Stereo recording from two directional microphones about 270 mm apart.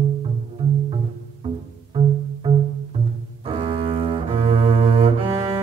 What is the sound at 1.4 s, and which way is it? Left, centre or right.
Music, centre.